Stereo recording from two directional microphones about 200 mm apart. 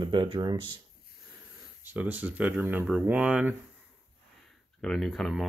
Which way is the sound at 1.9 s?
10° right (ahead or behind).